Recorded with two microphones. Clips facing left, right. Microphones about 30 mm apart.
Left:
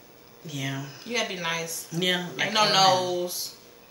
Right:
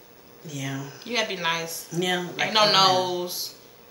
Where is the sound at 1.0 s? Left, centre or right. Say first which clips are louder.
Right 3 dB; right.